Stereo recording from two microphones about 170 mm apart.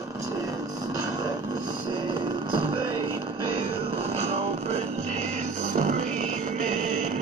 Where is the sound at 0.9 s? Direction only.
20° right (ahead or behind).